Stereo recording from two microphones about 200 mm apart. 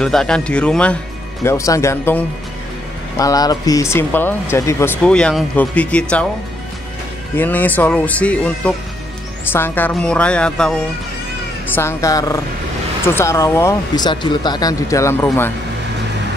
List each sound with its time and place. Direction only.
0.0 s speech: 5° left (ahead or behind)
7.3 s speech: 10° left (ahead or behind)